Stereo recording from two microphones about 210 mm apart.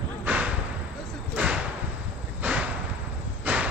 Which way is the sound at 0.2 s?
5° right (ahead or behind).